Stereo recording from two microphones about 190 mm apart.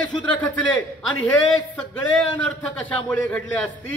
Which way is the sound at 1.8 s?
5° left (ahead or behind).